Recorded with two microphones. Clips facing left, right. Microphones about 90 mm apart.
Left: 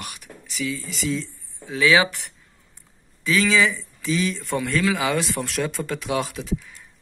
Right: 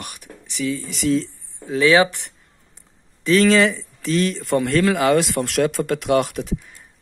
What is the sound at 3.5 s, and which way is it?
Speech, 60° right (ahead or behind).